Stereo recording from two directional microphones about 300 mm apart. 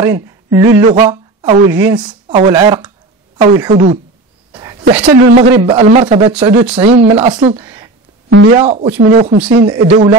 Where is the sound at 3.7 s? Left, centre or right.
Right.